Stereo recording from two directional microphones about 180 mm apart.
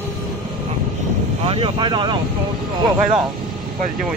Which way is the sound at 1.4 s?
30° right (ahead or behind).